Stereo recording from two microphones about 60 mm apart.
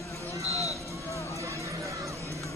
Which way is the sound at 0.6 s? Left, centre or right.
Left.